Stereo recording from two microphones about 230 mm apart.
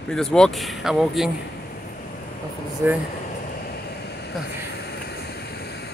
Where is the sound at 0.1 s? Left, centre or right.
Centre.